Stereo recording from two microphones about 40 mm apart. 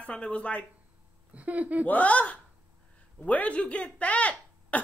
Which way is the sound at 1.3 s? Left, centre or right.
Right.